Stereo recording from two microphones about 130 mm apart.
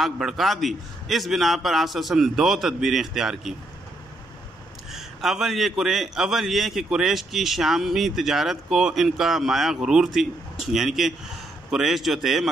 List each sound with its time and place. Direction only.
0.0 s a man's voice: centre (ahead or behind)
4.9 s a man's voice: 5° right (ahead or behind)